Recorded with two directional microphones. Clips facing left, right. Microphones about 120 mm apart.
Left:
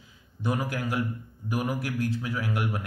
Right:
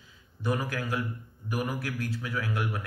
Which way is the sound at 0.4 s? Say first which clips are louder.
Left 1 dB; 15° left (ahead or behind).